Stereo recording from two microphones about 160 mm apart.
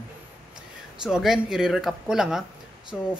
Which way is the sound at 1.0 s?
5° right (ahead or behind).